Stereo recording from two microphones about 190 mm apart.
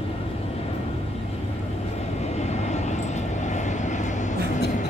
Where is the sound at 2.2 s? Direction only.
35° left (ahead or behind).